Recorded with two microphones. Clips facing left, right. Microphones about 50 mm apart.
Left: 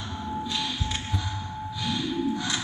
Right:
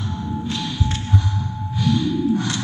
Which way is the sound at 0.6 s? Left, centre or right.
Centre.